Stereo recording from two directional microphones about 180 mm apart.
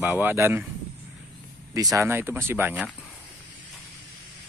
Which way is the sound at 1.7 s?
20° right (ahead or behind).